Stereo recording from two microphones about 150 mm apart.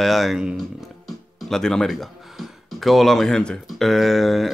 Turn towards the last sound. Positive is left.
turn(degrees=0)  # may be behind; listen again after turning